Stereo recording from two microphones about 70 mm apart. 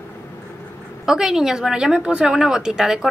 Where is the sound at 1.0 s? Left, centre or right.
Centre.